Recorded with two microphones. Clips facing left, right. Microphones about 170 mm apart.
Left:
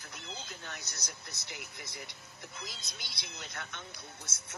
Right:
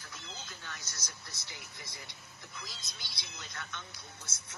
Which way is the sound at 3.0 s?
55° left (ahead or behind).